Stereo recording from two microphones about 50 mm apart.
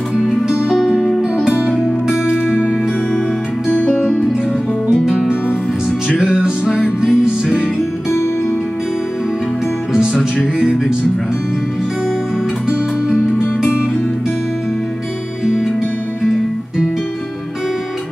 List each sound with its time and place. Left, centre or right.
0.3 s music: centre
5.0 s music: centre
15.4 s music: centre
16.3 s guitar: centre